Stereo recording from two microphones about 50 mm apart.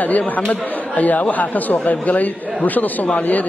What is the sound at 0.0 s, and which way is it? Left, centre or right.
Speech, left.